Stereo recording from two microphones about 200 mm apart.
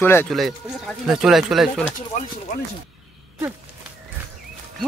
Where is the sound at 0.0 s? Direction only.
10° left (ahead or behind).